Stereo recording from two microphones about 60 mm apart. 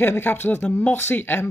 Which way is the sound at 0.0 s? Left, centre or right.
Left.